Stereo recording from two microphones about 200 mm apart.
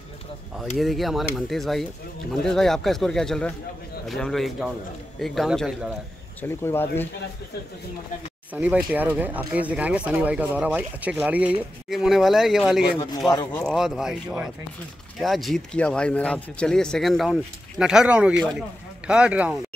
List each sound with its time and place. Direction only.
0.6 s speech: centre (ahead or behind)
6.6 s speech: 10° left (ahead or behind)
8.5 s speech: 5° right (ahead or behind)
13.3 s speech: 20° left (ahead or behind)
13.7 s speech: centre (ahead or behind)